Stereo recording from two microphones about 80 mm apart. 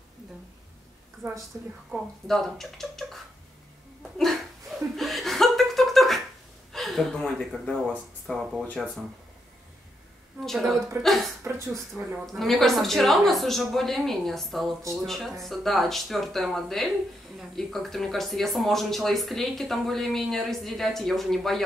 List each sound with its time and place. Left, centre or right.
1.2 s a woman's voice: right
2.2 s speech: centre
4.2 s chuckle: centre
6.7 s speech: centre
10.4 s speech: centre
11.4 s speech: right
12.3 s speech: centre